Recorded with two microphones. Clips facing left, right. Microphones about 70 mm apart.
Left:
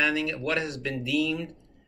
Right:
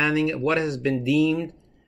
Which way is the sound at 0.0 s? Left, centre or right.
Right.